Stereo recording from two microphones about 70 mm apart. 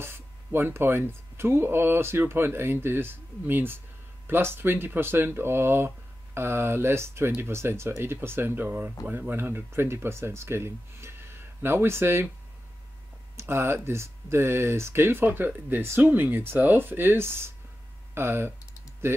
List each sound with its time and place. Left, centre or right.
0.0 s speech: right
13.4 s speech: right